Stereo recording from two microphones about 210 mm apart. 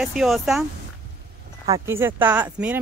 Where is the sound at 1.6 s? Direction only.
15° right (ahead or behind).